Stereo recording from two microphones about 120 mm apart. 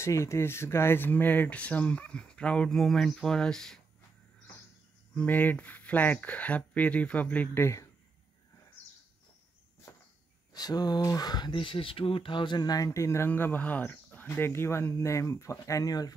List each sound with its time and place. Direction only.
0.0 s speech: 25° left (ahead or behind); by 3.8 s 5° left (ahead or behind)
5.1 s speech: 15° left (ahead or behind)
10.5 s speech: 35° left (ahead or behind)